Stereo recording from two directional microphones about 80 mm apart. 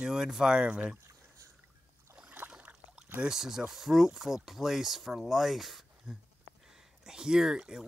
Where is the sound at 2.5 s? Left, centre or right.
Centre.